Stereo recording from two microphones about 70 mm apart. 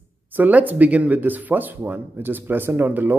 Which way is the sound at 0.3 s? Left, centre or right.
Right.